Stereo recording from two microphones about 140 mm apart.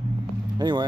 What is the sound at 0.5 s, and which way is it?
Speech, 30° right (ahead or behind).